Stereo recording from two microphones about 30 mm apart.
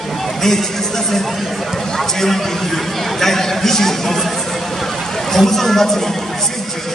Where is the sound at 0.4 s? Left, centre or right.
Centre.